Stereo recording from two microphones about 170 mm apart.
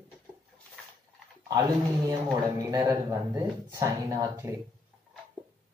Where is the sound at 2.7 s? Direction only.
20° right (ahead or behind).